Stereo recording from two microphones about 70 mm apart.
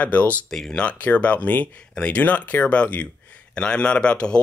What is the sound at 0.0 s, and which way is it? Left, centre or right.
Speech, left.